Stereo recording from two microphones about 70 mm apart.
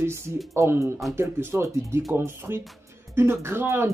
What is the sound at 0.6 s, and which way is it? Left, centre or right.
Speech, right.